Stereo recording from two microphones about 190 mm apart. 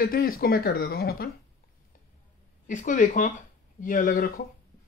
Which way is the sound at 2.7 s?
40° left (ahead or behind).